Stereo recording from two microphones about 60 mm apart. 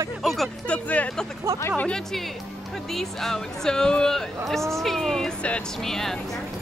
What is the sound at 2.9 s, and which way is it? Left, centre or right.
Speech, centre.